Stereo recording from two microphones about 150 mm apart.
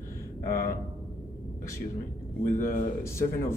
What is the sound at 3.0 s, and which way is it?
Speech, 20° left (ahead or behind).